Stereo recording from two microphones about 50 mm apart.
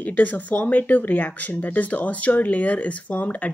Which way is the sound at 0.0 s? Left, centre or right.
Left.